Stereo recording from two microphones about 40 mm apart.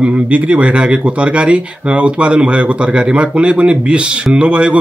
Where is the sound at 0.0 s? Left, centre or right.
Right.